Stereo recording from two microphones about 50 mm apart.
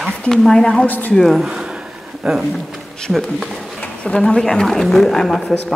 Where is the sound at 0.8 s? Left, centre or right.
Left.